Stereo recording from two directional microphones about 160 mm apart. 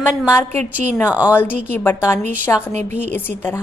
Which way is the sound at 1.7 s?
15° left (ahead or behind).